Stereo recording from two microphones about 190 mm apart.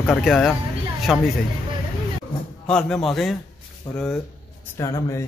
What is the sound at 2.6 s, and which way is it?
Speech, 5° left (ahead or behind).